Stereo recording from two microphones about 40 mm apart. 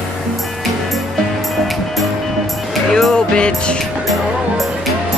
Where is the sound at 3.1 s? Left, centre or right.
Left.